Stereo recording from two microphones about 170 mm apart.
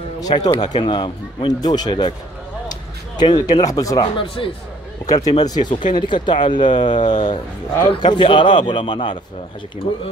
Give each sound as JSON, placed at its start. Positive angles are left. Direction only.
{"t": 0.2, "sound": "speech", "side_deg": 25}
{"t": 2.7, "sound": "a sound", "side_deg": 25}
{"t": 3.6, "sound": "speech", "side_deg": 20}